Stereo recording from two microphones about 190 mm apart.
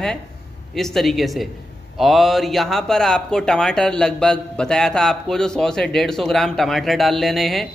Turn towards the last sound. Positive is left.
turn(degrees=0)  # may be behind; listen again after turning